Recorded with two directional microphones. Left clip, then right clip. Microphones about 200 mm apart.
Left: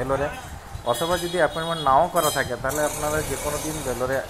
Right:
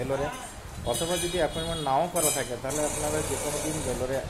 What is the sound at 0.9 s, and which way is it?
Speech, 10° left (ahead or behind).